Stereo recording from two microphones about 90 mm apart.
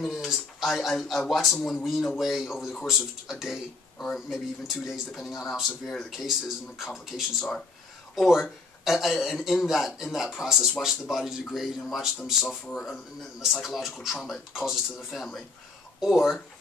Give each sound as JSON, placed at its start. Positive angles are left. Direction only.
{"t": 0.0, "sound": "speech", "side_deg": 0}